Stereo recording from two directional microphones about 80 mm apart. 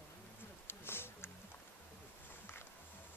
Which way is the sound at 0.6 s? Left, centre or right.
Left.